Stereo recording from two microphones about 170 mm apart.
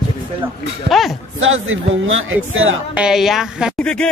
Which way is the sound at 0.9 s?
Centre (ahead or behind).